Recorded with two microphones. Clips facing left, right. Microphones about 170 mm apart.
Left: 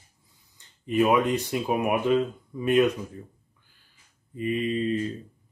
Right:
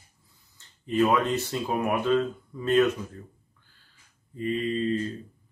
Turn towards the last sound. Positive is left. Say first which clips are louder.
# left 1 dB
turn(degrees=15)  # may be behind; listen again after turning